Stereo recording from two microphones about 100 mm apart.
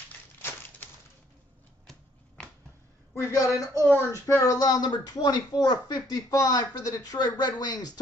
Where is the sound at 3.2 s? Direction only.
30° left (ahead or behind).